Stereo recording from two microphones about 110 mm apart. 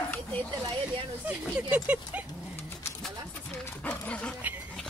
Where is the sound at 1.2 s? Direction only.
15° right (ahead or behind).